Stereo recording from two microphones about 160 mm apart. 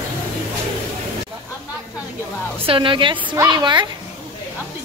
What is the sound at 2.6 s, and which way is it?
A woman's voice, 35° right (ahead or behind).